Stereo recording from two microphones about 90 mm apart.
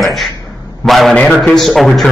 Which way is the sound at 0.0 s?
Centre (ahead or behind).